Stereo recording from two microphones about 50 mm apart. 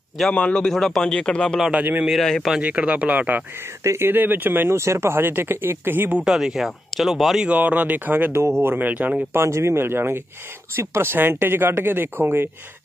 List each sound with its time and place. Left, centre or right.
0.3 s a man's voice: left
0.7 s a man's voice: centre
2.1 s speech: centre
2.6 s speech: right
4.7 s speech: right
6.2 s speech: centre
7.4 s speech: right
8.3 s speech: right
8.7 s speech: right
9.3 s speech: right
11.1 s speech: right